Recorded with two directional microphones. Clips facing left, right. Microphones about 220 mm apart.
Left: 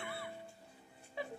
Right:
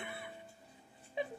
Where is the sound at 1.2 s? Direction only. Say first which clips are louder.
Right 4 dB; 20° right (ahead or behind).